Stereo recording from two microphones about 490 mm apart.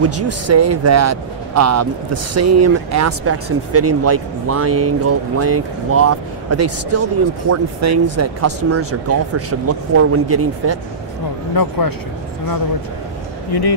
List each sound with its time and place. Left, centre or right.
0.0 s speech: right
11.6 s speech: left
13.5 s speech: left